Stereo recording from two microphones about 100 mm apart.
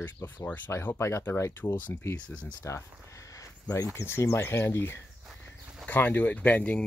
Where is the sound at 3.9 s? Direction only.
25° left (ahead or behind).